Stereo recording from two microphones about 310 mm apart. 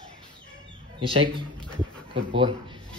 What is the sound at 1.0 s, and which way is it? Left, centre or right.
Speech, centre.